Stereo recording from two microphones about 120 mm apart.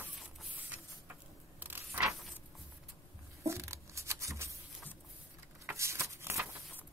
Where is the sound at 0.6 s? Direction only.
15° right (ahead or behind).